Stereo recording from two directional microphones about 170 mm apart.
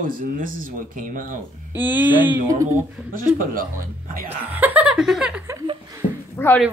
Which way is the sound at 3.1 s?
55° right (ahead or behind).